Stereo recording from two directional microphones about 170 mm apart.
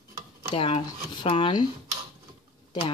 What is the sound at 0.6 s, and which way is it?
Speech, 30° left (ahead or behind).